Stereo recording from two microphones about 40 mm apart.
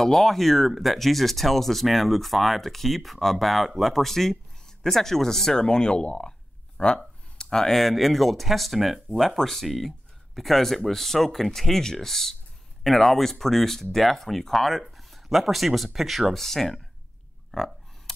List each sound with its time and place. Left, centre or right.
0.0 s speech: centre
7.3 s a sound: centre
7.6 s speech: centre
16.3 s speech: centre